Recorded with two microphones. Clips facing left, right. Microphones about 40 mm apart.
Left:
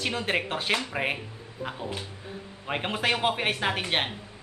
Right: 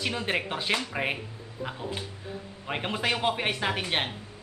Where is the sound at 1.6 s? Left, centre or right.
Left.